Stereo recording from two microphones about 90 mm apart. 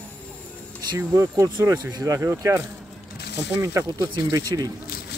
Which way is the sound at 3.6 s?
35° right (ahead or behind).